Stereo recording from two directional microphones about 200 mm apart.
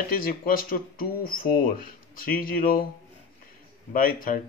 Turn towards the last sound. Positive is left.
turn(degrees=45)  # may be behind; listen again after turning